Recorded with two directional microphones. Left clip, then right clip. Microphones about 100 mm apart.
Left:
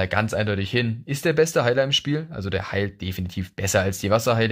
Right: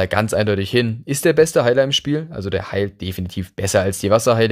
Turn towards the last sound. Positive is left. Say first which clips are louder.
# right 6 dB
turn(degrees=-45)  # may be behind; listen again after turning